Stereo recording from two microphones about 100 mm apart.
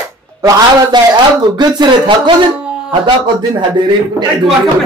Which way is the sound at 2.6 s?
10° right (ahead or behind).